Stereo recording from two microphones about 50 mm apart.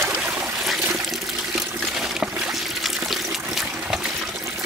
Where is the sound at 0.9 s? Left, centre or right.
Centre.